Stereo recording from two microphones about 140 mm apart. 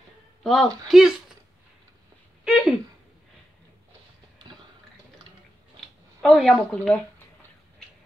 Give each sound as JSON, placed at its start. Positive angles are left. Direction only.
{"t": 0.4, "sound": "speech", "side_deg": 0}
{"t": 2.4, "sound": "a sound", "side_deg": -5}
{"t": 6.2, "sound": "speech", "side_deg": 0}